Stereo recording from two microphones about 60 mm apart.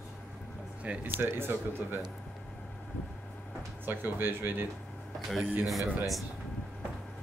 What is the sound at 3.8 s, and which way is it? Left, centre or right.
Speech, right.